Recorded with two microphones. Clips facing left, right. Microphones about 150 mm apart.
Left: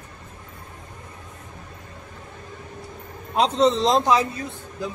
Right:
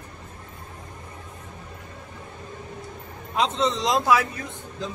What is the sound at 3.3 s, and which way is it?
Speech, 35° left (ahead or behind).